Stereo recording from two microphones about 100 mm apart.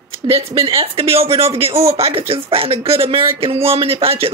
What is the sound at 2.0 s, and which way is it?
Speech, 75° right (ahead or behind).